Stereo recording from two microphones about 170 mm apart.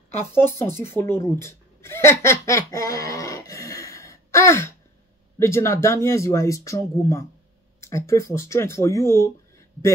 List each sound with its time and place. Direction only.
0.2 s speech: 15° left (ahead or behind)